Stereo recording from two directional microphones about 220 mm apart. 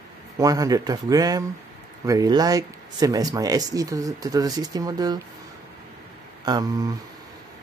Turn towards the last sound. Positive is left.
turn(degrees=-15)  # may be behind; listen again after turning